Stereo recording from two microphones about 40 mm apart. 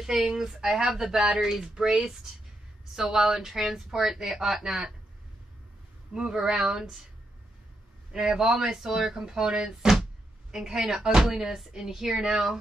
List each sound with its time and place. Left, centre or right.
0.0 s speech: centre
3.2 s speech: centre
6.1 s speech: centre
8.1 s speech: centre